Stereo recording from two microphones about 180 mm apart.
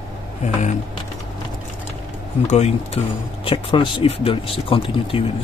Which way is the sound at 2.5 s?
35° left (ahead or behind).